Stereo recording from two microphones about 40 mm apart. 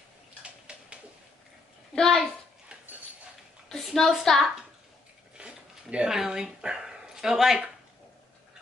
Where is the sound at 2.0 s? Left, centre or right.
Centre.